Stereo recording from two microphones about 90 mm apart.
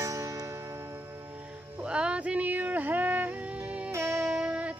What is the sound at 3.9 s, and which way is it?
Music, 30° right (ahead or behind).